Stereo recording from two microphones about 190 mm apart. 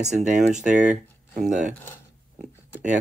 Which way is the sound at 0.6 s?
5° right (ahead or behind).